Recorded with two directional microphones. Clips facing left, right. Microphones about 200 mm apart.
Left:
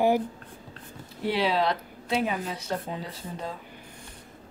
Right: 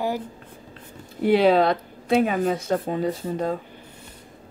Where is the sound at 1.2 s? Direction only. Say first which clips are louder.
Right 8 dB; 50° right (ahead or behind).